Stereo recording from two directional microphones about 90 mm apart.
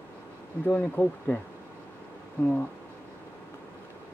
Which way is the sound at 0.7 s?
15° left (ahead or behind).